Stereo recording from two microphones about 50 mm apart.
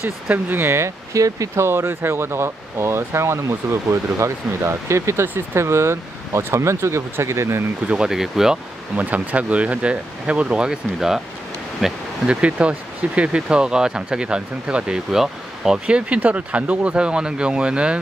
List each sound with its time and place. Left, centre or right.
0.3 s speech: right
7.8 s speech: right
8.1 s speech: centre
8.9 s speech: right
10.7 s speech: centre
12.3 s speech: right
16.2 s speech: right